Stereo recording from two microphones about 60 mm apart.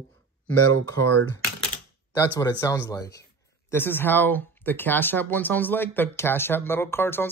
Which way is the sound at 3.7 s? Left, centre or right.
Left.